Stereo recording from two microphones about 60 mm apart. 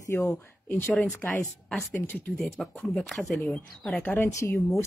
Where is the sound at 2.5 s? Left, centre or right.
Centre.